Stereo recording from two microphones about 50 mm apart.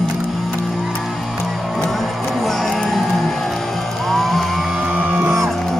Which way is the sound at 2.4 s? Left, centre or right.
Centre.